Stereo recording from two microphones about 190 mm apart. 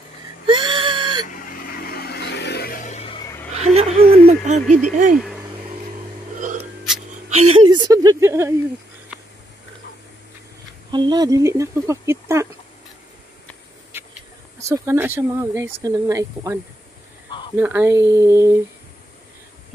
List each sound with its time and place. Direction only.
0.5 s whimper: 25° right (ahead or behind)
1.2 s vehicle: 45° left (ahead or behind); by 3.3 s 30° left (ahead or behind)
3.5 s chuckle: 35° right (ahead or behind)
4.3 s a sound: 35° right (ahead or behind)
4.6 s speech: centre (ahead or behind)
4.9 s speech: 45° right (ahead or behind)
6.3 s a sound: 40° right (ahead or behind); by 8.5 s 15° right (ahead or behind)
10.9 s speech: 25° right (ahead or behind)
14.6 s speech: 15° right (ahead or behind)
17.6 s speech: 10° right (ahead or behind)